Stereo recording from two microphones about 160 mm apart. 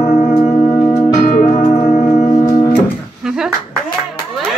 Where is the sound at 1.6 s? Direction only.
40° left (ahead or behind).